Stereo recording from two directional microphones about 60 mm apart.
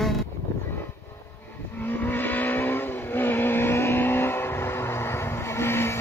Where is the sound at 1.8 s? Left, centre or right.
Left.